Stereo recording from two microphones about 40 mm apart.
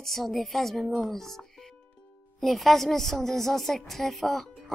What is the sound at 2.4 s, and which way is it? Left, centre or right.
A woman's voice, centre.